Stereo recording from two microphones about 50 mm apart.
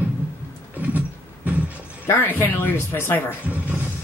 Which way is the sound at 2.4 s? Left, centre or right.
Left.